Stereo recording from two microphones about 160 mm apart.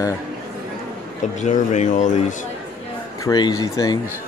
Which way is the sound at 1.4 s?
45° left (ahead or behind).